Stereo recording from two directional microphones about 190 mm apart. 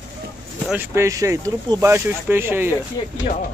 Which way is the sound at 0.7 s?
10° right (ahead or behind).